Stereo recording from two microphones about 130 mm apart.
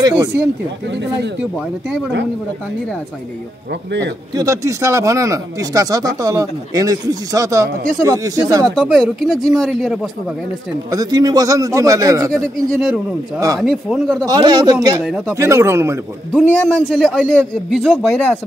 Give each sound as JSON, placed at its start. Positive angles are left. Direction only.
{"t": 0.0, "sound": "speech", "side_deg": -30}
{"t": 4.4, "sound": "speech", "side_deg": -25}
{"t": 8.7, "sound": "speech", "side_deg": 0}
{"t": 10.9, "sound": "speech", "side_deg": -30}
{"t": 13.6, "sound": "speech", "side_deg": 0}
{"t": 14.2, "sound": "speech", "side_deg": -30}
{"t": 15.0, "sound": "speech", "side_deg": -5}
{"t": 15.3, "sound": "speech", "side_deg": -20}
{"t": 16.5, "sound": "speech", "side_deg": 5}